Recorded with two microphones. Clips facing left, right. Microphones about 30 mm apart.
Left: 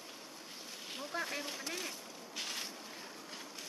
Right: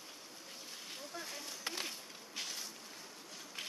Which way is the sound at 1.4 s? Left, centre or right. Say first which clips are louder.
Left 6 dB; left.